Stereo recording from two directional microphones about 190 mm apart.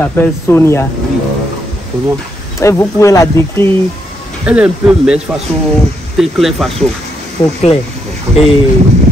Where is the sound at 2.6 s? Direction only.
15° left (ahead or behind).